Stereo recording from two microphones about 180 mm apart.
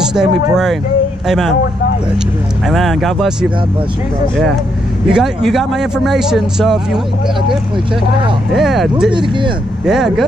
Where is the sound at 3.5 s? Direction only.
25° right (ahead or behind).